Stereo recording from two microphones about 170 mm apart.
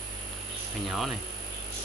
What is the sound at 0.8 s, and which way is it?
Speech, centre (ahead or behind).